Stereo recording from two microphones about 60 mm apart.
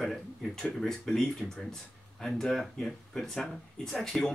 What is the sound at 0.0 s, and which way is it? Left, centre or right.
Speech, centre.